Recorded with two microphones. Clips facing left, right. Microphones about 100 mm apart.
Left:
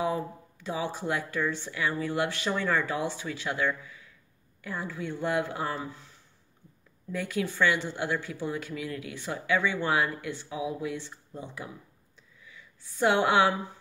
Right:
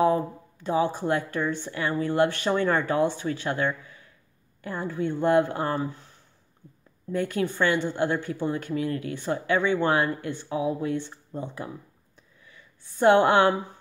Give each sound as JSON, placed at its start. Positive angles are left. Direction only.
{"t": 0.0, "sound": "speech", "side_deg": -45}
{"t": 7.1, "sound": "speech", "side_deg": -45}